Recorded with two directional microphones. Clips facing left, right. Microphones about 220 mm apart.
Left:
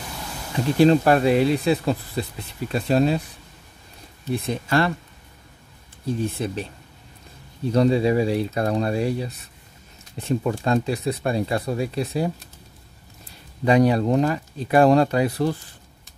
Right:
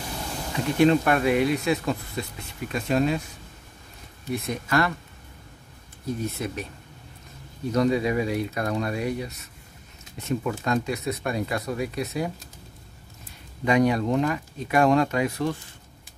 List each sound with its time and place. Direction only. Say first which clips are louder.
0.7 s speech: left 4 dB; 30° left (ahead or behind)
4.3 s speech: left 3 dB; 30° left (ahead or behind)
6.0 s speech: left 4 dB; 30° left (ahead or behind)
7.7 s speech: left 4 dB; 30° left (ahead or behind)
13.7 s speech: left 3 dB; 35° left (ahead or behind)